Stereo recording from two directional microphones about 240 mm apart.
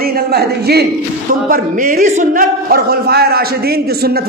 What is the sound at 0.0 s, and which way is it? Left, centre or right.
A man's voice, right.